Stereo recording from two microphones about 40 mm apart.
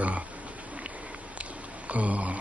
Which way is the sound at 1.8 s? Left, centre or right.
Right.